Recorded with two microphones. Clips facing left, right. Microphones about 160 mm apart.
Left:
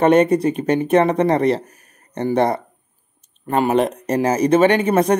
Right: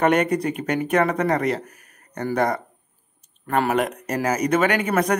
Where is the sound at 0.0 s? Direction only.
25° left (ahead or behind).